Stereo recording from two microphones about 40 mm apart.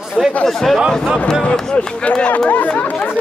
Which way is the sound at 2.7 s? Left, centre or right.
Left.